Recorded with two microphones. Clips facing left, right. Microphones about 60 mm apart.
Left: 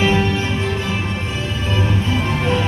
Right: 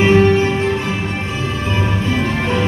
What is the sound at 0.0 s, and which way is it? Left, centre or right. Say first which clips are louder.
Music: right 6 dB; right.